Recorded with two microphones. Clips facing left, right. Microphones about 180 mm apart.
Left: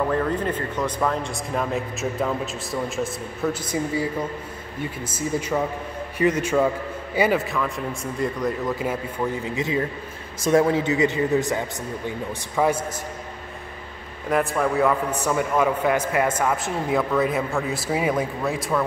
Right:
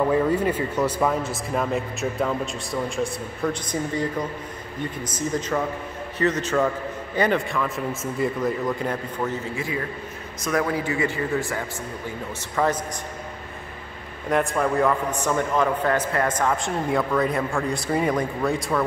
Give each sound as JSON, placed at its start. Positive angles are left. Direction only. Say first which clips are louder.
{"t": 0.1, "sound": "a man's voice", "louder": "right 3 dB", "side_deg": -10}
{"t": 14.3, "sound": "speech", "louder": "even", "side_deg": 0}